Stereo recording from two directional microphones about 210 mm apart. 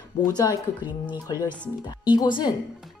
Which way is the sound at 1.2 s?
15° left (ahead or behind).